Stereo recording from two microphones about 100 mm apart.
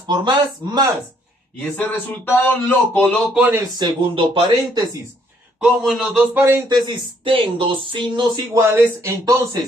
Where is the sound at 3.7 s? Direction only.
50° right (ahead or behind).